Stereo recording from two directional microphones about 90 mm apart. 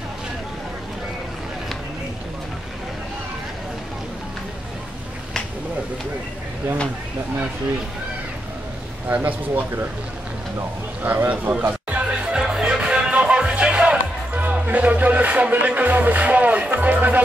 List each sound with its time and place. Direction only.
9.1 s speech: 20° right (ahead or behind)
11.0 s music: 20° right (ahead or behind)